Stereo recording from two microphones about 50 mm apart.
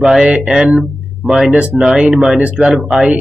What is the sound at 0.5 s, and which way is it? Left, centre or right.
Speech, centre.